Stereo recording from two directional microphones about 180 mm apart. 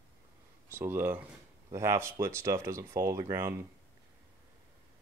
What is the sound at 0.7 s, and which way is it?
Speech, 10° right (ahead or behind).